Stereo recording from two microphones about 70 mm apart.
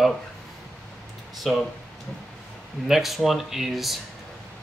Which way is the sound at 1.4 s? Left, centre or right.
Centre.